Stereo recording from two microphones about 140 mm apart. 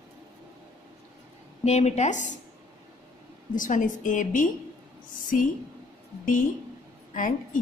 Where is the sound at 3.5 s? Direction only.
70° left (ahead or behind).